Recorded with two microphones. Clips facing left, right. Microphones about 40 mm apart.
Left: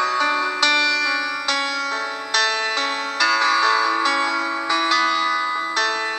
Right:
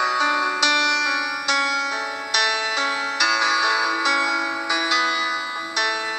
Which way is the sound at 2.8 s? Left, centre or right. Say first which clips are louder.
Right 1 dB; left.